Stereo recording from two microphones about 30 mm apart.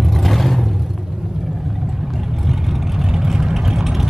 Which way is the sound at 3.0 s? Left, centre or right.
Centre.